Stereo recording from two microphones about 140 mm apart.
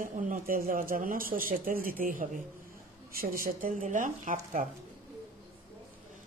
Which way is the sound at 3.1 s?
90° right.